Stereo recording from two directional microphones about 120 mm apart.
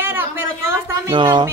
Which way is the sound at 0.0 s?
20° right (ahead or behind).